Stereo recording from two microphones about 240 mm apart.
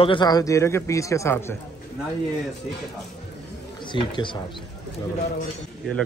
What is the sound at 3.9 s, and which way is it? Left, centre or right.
Speech, centre.